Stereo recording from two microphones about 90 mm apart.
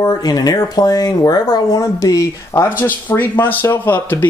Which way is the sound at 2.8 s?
20° left (ahead or behind).